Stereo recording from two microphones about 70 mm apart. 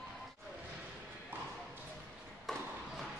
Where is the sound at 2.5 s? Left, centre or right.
Centre.